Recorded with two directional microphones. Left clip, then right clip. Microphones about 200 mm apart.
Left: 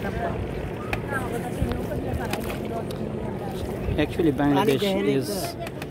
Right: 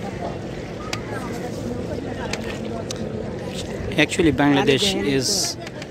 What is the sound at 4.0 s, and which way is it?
A man's voice, 15° right (ahead or behind).